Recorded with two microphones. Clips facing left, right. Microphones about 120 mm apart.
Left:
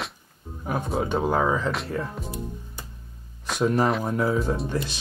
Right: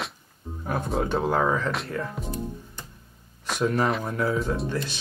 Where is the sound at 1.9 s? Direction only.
10° left (ahead or behind).